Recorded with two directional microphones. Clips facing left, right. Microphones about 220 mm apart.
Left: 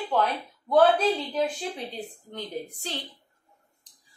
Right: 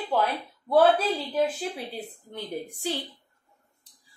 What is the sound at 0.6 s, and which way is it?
A woman's voice, 5° right (ahead or behind).